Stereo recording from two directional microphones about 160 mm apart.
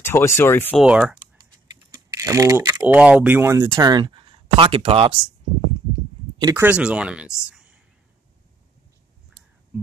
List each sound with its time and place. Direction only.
0.0 s speech: 15° left (ahead or behind)
0.7 s speech: 5° right (ahead or behind)
2.0 s typing: 20° right (ahead or behind)
3.0 s speech: 10° right (ahead or behind); by 5.1 s 30° right (ahead or behind)
6.5 s speech: 10° right (ahead or behind)